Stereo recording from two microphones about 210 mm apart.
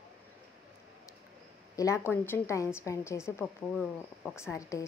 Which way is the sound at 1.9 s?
10° left (ahead or behind).